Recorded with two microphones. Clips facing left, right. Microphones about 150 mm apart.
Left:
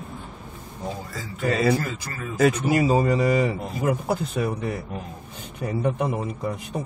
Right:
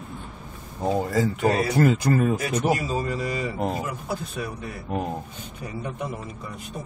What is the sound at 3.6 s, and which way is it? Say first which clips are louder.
Speech: right 3 dB; 90° right.